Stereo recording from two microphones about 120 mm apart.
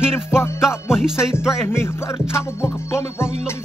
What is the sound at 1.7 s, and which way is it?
Music, 20° left (ahead or behind).